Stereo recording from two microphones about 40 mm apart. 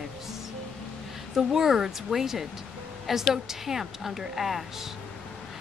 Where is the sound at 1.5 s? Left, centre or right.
Centre.